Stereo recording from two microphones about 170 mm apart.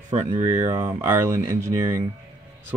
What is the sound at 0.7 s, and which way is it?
Speech, 20° right (ahead or behind).